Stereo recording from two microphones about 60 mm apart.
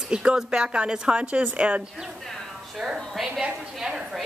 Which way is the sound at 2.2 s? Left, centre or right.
Centre.